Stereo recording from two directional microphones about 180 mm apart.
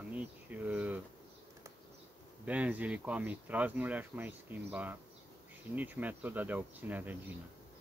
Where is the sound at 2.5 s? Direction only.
10° right (ahead or behind).